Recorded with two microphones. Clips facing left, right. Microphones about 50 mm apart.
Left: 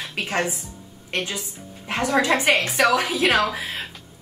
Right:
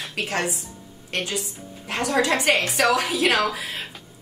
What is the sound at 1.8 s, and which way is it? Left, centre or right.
A woman's voice, left.